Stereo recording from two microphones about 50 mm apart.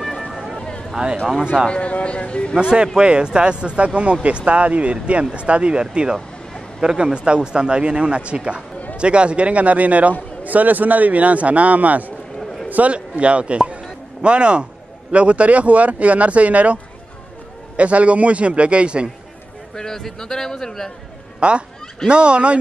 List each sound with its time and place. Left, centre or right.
0.2 s a sound: centre
0.6 s a sound: centre
1.4 s speech: centre
1.7 s speech: left
2.5 s a man's voice: centre
12.6 s a sound: right
12.9 s speech: right
19.7 s a man's voice: centre
21.4 s speech: right